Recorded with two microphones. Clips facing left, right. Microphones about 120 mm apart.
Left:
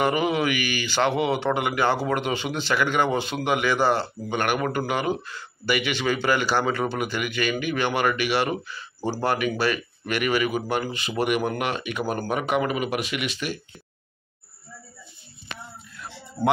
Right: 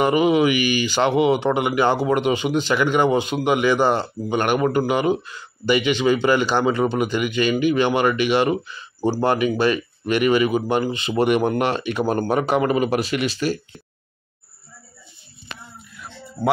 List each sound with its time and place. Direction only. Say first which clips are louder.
0.0 s speech: right 6 dB; 20° right (ahead or behind); by 13.6 s 35° right (ahead or behind)